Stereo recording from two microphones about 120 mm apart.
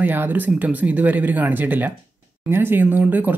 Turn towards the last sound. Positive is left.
turn(degrees=-15)  # may be behind; listen again after turning